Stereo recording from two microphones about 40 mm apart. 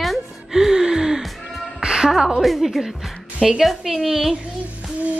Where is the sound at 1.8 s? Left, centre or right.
Centre.